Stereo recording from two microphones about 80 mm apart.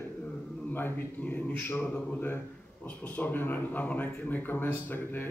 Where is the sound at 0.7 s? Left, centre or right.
Left.